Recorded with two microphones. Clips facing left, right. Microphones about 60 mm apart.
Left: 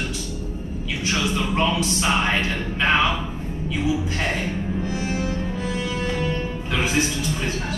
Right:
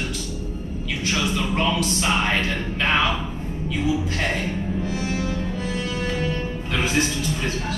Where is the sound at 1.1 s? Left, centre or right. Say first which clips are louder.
Left 1 dB; centre.